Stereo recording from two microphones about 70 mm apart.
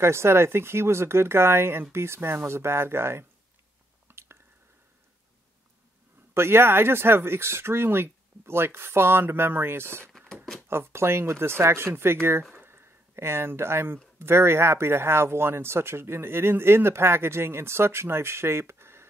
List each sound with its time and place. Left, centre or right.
0.0 s speech: right
4.1 s squish: right
6.3 s speech: right
10.1 s a sound: centre
10.7 s speech: right
12.5 s a sound: right
14.1 s speech: right